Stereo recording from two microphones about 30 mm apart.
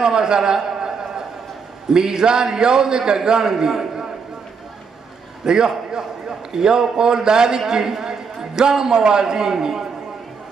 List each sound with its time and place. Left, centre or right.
0.0 s a sound: right
1.9 s a man's voice: right
5.4 s a man's voice: right